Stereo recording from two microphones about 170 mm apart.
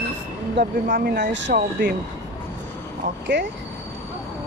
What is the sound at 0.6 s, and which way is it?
Speech, 90° right.